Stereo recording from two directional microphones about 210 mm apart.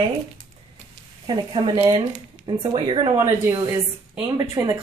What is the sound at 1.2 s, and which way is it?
Speech, 20° right (ahead or behind).